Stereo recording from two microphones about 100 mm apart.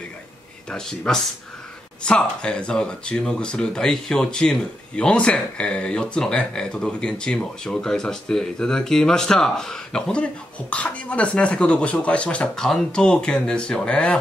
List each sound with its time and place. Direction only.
0.7 s speech: 5° left (ahead or behind)